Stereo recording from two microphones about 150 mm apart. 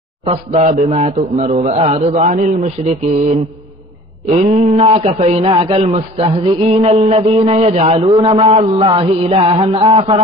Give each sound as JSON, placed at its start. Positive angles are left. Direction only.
{"t": 0.2, "sound": "a man's voice", "side_deg": -40}
{"t": 4.3, "sound": "a man's voice", "side_deg": -45}
{"t": 8.2, "sound": "music", "side_deg": -40}